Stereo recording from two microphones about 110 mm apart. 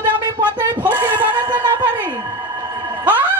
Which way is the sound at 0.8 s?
15° right (ahead or behind).